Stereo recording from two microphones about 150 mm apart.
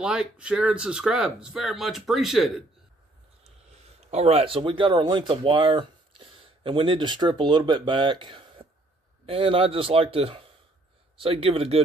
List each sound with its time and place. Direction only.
0.0 s speech: 5° right (ahead or behind)
3.7 s speech: 45° right (ahead or behind)